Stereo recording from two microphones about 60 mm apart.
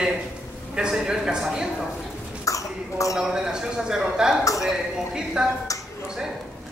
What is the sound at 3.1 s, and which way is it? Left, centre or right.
A man's voice, centre.